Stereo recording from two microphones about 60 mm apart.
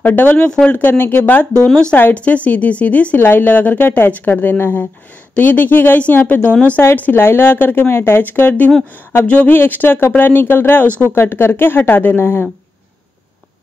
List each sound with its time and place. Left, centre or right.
0.0 s speech: left
0.4 s a woman's voice: centre
0.8 s a woman's voice: left
3.2 s a woman's voice: left